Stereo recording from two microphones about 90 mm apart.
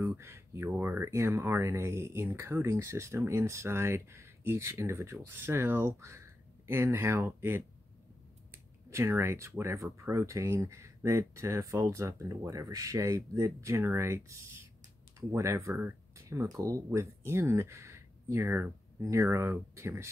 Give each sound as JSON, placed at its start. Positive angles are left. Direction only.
{"t": 0.0, "sound": "speech", "side_deg": -30}
{"t": 8.9, "sound": "speech", "side_deg": -30}